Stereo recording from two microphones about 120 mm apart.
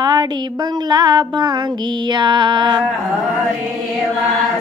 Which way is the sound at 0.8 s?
35° right (ahead or behind).